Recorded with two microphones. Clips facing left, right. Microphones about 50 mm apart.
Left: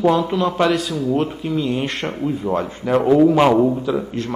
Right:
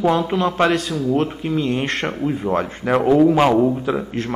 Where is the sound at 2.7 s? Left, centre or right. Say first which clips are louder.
Left 2 dB; right.